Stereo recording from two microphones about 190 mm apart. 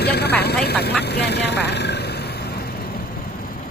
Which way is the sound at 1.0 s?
60° left (ahead or behind).